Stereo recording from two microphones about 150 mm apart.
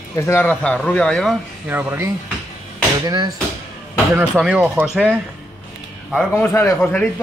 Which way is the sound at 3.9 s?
10° right (ahead or behind).